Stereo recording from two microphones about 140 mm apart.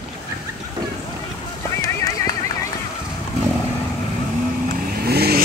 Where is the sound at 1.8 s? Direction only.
25° left (ahead or behind).